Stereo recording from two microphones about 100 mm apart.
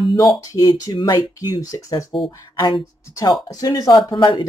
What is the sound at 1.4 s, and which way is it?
Speech, 35° left (ahead or behind).